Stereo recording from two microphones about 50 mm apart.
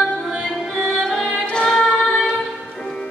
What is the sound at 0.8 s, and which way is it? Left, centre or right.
Music, centre.